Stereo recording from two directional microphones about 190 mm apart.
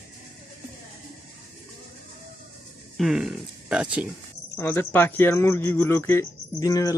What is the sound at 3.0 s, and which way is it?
Speech, centre (ahead or behind).